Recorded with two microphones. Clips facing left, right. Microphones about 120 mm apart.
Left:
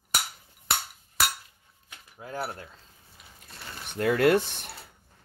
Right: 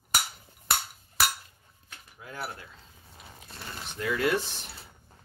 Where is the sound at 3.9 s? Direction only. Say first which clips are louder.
Left 6 dB; 55° left (ahead or behind).